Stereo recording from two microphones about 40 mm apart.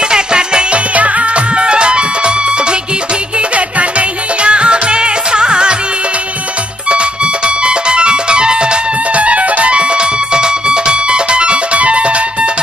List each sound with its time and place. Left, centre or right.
0.1 s music: right
6.9 s music: right